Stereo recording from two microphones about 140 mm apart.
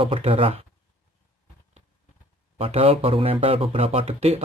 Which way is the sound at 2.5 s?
45° right (ahead or behind).